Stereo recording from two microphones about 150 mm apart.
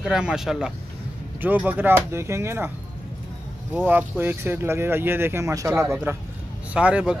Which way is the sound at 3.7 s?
10° right (ahead or behind).